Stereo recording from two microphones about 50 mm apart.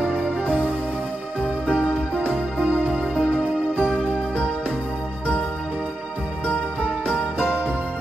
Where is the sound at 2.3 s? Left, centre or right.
Right.